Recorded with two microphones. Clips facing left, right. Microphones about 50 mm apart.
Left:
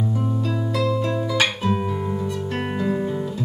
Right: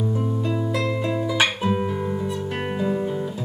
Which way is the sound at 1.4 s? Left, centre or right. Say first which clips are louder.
Right 1 dB; centre.